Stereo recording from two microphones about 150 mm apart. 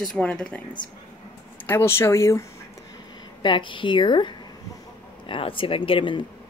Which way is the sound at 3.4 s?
30° left (ahead or behind).